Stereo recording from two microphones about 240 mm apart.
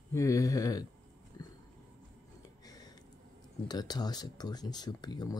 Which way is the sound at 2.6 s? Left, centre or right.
Centre.